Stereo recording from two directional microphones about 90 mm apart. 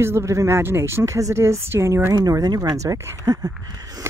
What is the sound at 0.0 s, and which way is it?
Speech, 30° right (ahead or behind).